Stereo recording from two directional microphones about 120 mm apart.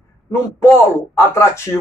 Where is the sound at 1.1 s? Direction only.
20° left (ahead or behind).